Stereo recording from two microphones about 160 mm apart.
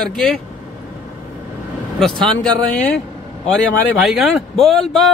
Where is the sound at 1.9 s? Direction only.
Centre (ahead or behind).